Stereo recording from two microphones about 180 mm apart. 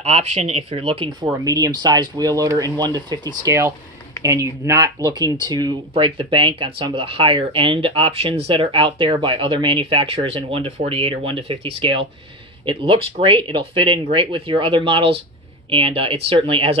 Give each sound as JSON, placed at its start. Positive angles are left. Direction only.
{"t": 0.0, "sound": "speech", "side_deg": -35}
{"t": 1.4, "sound": "speech", "side_deg": -20}